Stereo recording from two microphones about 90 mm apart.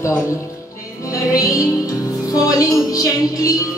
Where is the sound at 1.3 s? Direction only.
40° left (ahead or behind).